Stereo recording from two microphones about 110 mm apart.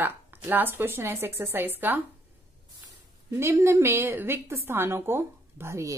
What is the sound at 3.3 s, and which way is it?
A woman's voice, 25° right (ahead or behind).